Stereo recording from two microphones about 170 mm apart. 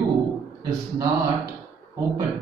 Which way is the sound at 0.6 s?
20° right (ahead or behind).